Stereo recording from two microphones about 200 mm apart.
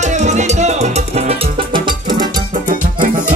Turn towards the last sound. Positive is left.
turn(degrees=-40)  # may be behind; listen again after turning